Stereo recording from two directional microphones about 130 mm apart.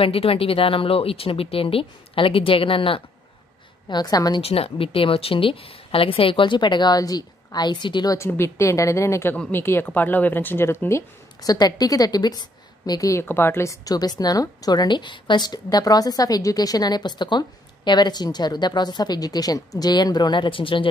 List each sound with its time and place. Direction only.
0.0 s speech: 45° left (ahead or behind)
3.9 s a woman's voice: 30° left (ahead or behind)
4.4 s speech: 50° left (ahead or behind); by 8.2 s 35° left (ahead or behind)
8.2 s a woman's voice: 20° left (ahead or behind); by 20.9 s 40° left (ahead or behind)